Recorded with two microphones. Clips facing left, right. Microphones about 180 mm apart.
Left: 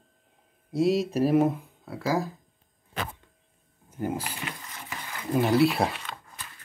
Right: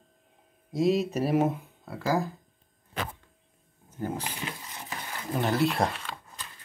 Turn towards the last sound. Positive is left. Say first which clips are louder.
# left 3 dB
turn(degrees=5)  # may be behind; listen again after turning